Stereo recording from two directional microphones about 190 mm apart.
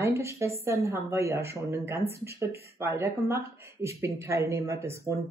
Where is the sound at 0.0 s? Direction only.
15° right (ahead or behind).